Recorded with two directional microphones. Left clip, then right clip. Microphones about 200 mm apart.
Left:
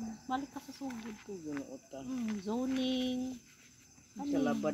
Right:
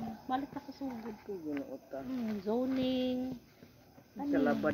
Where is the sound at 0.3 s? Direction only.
20° left (ahead or behind).